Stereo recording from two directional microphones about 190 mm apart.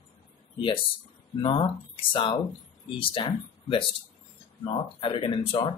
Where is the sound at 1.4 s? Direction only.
25° left (ahead or behind).